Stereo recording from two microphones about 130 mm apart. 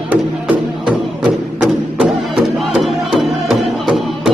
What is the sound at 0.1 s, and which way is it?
Music, 10° right (ahead or behind).